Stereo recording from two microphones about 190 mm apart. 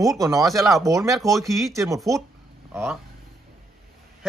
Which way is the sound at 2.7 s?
5° right (ahead or behind).